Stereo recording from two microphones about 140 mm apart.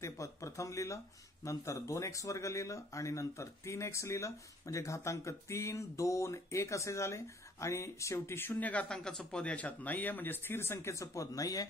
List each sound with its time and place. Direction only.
0.0 s speech: 20° left (ahead or behind)